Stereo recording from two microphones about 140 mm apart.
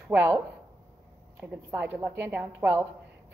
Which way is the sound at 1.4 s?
15° right (ahead or behind).